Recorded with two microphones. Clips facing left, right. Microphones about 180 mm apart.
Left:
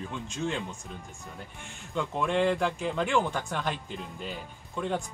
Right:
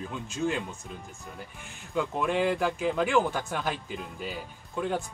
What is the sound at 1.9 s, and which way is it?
Speech, 5° right (ahead or behind).